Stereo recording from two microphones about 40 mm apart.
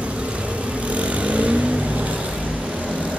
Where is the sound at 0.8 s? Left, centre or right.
Right.